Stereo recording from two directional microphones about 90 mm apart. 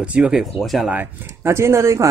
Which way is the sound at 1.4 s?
30° right (ahead or behind).